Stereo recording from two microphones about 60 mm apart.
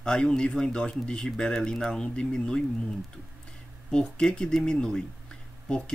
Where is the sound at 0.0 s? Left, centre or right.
Centre.